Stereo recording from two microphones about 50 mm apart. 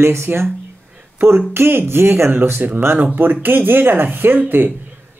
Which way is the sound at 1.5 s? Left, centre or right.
Right.